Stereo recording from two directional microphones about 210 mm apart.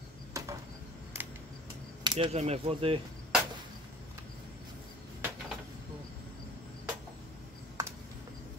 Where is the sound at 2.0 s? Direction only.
25° right (ahead or behind).